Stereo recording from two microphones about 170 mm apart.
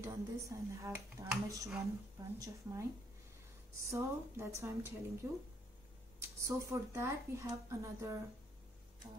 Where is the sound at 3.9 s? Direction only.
15° right (ahead or behind).